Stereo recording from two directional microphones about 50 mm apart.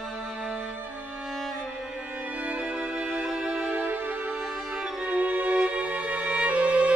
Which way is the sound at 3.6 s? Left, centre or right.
Right.